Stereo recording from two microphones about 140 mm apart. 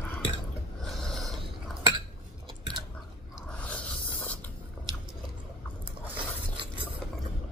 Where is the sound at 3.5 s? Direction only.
10° left (ahead or behind).